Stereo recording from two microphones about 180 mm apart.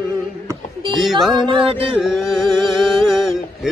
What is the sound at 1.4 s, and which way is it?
Music, 25° right (ahead or behind).